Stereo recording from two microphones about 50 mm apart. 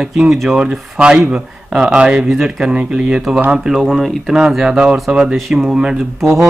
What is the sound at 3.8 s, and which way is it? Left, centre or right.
Speech, centre.